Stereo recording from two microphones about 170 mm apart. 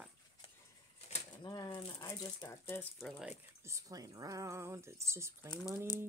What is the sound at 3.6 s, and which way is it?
Speech, 20° right (ahead or behind).